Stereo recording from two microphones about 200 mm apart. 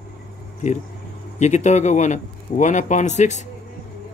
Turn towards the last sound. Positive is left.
turn(degrees=35)  # may be behind; listen again after turning